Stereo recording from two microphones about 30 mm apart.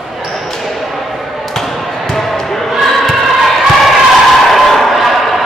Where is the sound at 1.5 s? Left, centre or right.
Centre.